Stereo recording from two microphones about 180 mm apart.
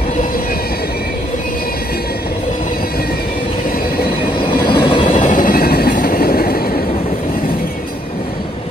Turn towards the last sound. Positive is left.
turn(degrees=55)  # may be behind; listen again after turning